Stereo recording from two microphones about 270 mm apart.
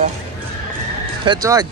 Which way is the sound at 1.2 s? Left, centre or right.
Centre.